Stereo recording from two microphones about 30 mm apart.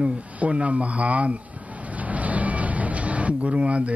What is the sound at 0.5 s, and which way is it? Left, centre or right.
Speech, right.